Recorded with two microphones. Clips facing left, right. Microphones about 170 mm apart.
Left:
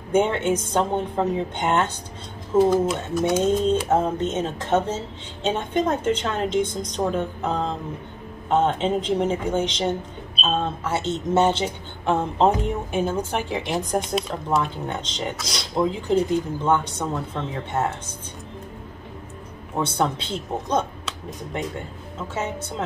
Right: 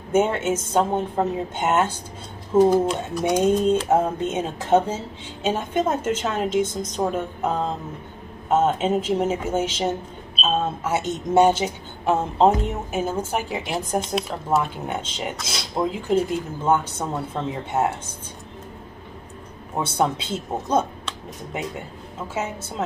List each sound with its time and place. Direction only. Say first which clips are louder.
0.1 s a woman's voice: even; 5° right (ahead or behind)
2.9 s speech: even; 5° left (ahead or behind)
3.4 s a woman's voice: right 1 dB; 10° right (ahead or behind)
20.0 s a woman's voice: right 5 dB; 10° right (ahead or behind)
22.3 s a woman's voice: even; 5° right (ahead or behind)